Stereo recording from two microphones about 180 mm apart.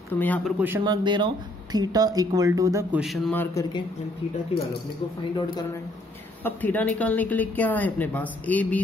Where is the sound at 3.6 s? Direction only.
15° left (ahead or behind).